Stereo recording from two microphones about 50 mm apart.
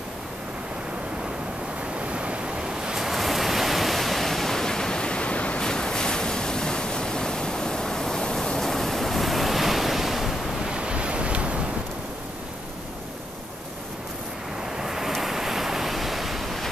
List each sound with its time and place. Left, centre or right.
2.0 s waves: right; by 5.6 s left
5.6 s waves: centre
10.6 s waves: centre
14.8 s waves: centre